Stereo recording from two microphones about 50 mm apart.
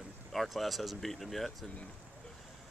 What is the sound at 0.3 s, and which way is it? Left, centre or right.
Speech, centre.